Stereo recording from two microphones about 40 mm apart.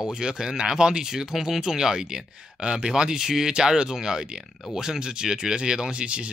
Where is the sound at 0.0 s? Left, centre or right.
Centre.